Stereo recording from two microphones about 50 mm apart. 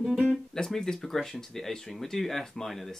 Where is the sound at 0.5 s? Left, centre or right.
Centre.